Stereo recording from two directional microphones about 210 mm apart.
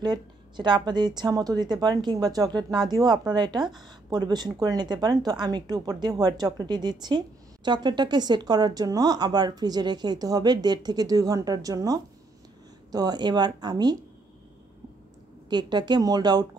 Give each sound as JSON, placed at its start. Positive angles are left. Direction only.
{"t": 0.0, "sound": "speech", "side_deg": -20}
{"t": 15.5, "sound": "speech", "side_deg": -20}